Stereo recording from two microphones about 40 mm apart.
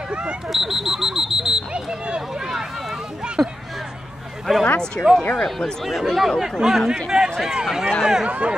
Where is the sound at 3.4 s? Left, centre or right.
Centre.